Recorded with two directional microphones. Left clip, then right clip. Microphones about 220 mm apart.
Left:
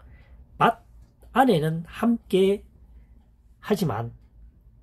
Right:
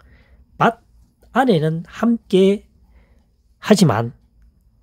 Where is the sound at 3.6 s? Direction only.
50° right (ahead or behind).